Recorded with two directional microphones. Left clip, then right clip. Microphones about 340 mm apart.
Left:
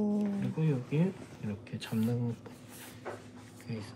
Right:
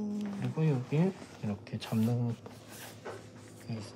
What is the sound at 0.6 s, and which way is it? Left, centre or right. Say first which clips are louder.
Speech: right 2 dB; centre.